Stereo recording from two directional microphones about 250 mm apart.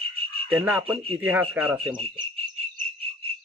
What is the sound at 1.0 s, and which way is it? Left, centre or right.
Speech, right.